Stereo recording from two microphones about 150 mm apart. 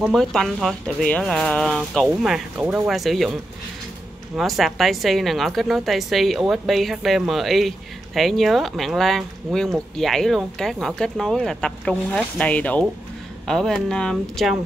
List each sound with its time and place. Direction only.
0.0 s a woman's voice: centre (ahead or behind)
2.6 s speech: 15° right (ahead or behind)
2.9 s a woman's voice: centre (ahead or behind)
4.4 s a woman's voice: centre (ahead or behind)